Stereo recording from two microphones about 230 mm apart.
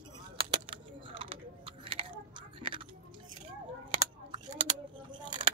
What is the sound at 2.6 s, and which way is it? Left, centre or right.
Chewing, right.